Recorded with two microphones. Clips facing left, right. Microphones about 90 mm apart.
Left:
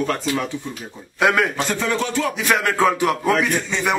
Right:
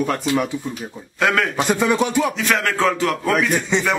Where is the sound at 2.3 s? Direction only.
10° left (ahead or behind).